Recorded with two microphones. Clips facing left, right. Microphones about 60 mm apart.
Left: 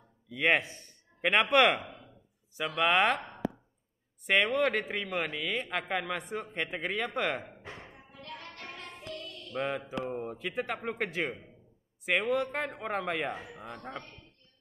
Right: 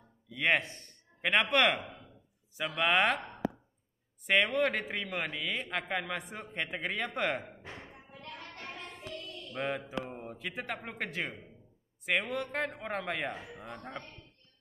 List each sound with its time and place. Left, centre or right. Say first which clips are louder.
0.3 s a man's voice: left 2 dB; centre
4.3 s a man's voice: left 1 dB; centre
7.9 s music: left 1 dB; right
9.5 s a man's voice: left 2 dB; centre